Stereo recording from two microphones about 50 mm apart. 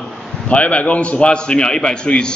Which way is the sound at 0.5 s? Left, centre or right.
Left.